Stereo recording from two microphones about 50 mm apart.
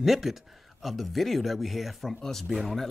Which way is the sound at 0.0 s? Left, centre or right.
Centre.